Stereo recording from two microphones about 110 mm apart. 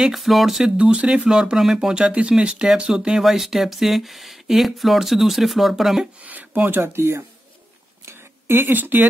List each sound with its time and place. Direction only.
0.0 s speech: centre (ahead or behind)
6.2 s speech: 15° right (ahead or behind)
8.0 s a sound: 25° right (ahead or behind)